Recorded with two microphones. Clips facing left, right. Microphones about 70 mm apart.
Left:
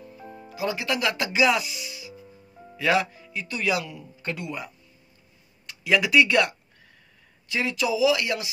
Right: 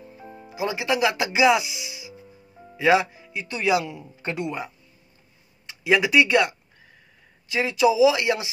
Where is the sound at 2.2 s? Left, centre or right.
Centre.